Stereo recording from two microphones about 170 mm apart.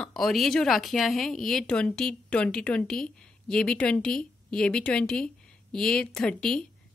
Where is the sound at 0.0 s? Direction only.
Centre (ahead or behind).